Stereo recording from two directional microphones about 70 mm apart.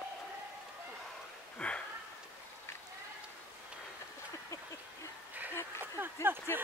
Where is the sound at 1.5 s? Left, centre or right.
Centre.